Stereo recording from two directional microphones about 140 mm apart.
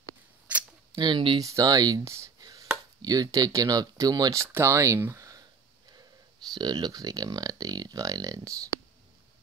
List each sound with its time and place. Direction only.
0.5 s camera: 10° right (ahead or behind)
0.9 s speech: 35° right (ahead or behind)
1.4 s speech: 25° right (ahead or behind)
6.5 s speech: 30° right (ahead or behind)